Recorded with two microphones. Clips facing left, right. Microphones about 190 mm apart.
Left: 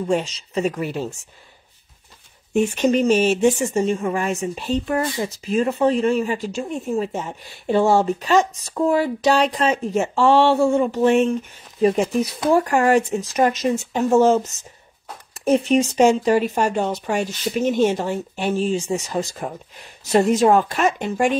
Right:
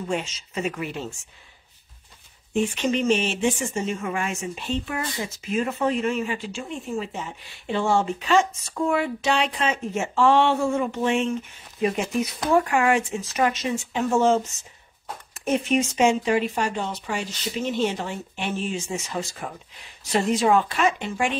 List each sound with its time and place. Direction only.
0.1 s speech: 35° left (ahead or behind)
2.6 s speech: 40° left (ahead or behind)